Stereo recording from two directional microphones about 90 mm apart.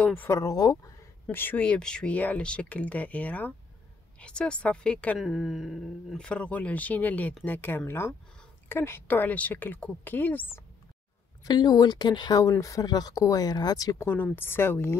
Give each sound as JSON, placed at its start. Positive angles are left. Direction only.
{"t": 0.0, "sound": "speech", "side_deg": 15}
{"t": 0.3, "sound": "speech", "side_deg": 40}
{"t": 1.3, "sound": "speech", "side_deg": 20}
{"t": 5.2, "sound": "speech", "side_deg": 0}
{"t": 6.1, "sound": "speech", "side_deg": 10}
{"t": 11.4, "sound": "speech", "side_deg": 50}
{"t": 14.0, "sound": "speech", "side_deg": 25}